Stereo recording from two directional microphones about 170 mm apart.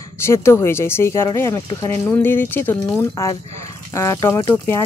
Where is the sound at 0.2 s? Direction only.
15° left (ahead or behind).